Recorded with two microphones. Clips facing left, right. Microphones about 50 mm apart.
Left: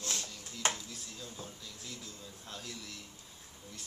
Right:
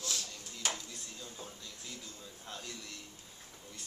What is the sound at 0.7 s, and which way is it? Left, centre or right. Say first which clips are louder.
Speech: even; centre.